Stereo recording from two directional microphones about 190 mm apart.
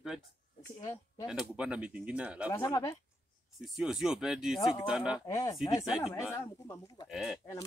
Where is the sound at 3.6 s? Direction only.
Centre (ahead or behind).